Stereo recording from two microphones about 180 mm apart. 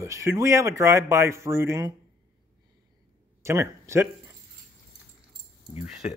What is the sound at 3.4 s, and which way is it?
Speech, 15° right (ahead or behind).